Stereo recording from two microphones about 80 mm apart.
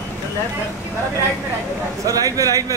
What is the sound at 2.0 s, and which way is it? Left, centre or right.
Speech, right.